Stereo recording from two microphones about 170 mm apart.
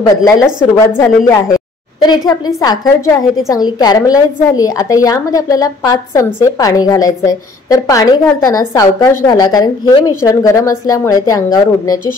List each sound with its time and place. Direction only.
0.1 s a woman's voice: 20° left (ahead or behind)